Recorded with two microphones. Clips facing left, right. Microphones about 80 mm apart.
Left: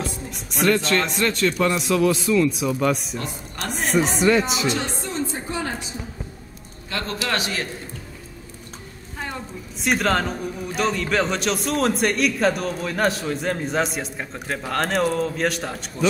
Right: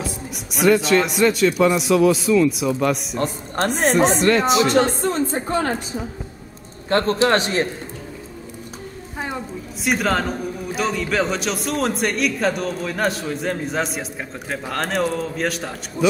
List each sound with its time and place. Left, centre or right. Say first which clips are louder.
0.0 s a woman's voice: right 1 dB; centre
3.2 s speech: right 9 dB; right
6.9 s a man's voice: right 9 dB; right
9.2 s a woman's voice: right 3 dB; centre